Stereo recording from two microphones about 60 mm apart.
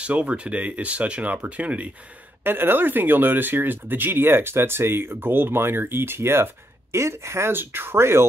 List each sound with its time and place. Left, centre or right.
0.0 s speech: right
2.4 s speech: right